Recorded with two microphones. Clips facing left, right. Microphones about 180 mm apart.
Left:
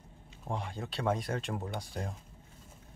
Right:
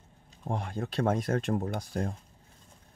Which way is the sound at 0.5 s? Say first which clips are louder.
Right 4 dB; 50° right (ahead or behind).